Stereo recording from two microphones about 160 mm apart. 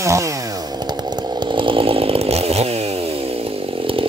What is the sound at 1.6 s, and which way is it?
Chainsaw, 35° right (ahead or behind).